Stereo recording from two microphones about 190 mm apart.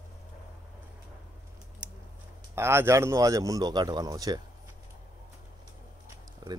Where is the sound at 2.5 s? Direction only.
15° right (ahead or behind).